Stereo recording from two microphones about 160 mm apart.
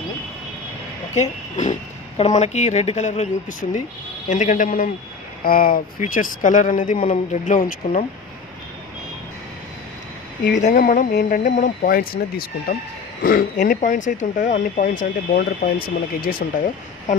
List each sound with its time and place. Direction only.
1.1 s speech: 45° left (ahead or behind)
10.6 s speech: 55° left (ahead or behind)